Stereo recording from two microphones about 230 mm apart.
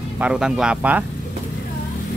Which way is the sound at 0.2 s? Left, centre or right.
Centre.